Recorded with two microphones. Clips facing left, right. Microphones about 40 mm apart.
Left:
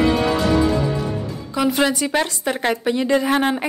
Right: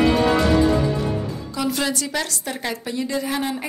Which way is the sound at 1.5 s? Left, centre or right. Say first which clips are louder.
Left 6 dB; left.